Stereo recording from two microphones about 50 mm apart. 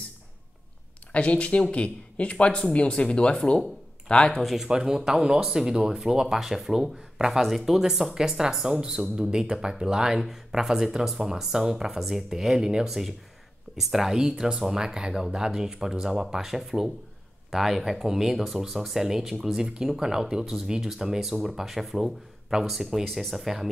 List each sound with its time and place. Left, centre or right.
1.1 s speech: left
4.4 s speech: centre
4.6 s speech: centre